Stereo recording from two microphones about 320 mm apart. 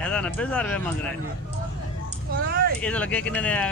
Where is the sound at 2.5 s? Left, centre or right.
Right.